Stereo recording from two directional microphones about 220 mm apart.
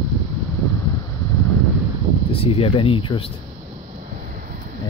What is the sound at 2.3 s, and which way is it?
Speech, 25° left (ahead or behind).